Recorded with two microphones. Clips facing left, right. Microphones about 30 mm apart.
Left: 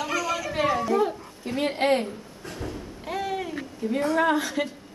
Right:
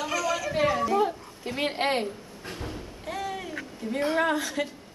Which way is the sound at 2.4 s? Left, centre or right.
Right.